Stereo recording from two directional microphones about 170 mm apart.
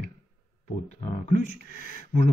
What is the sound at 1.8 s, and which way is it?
Speech, 45° left (ahead or behind).